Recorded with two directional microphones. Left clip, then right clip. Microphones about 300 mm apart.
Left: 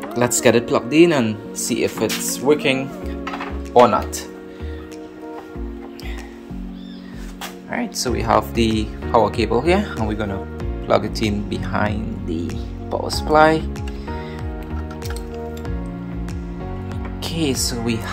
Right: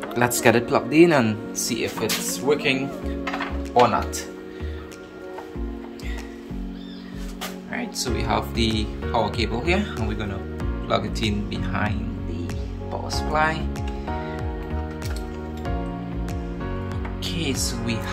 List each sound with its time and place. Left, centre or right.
0.1 s speech: centre
1.7 s speech: centre
7.7 s speech: centre
13.0 s speech: left
17.2 s speech: centre